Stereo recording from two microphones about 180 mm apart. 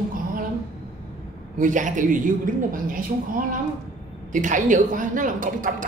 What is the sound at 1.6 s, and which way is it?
A woman's voice, 45° right (ahead or behind).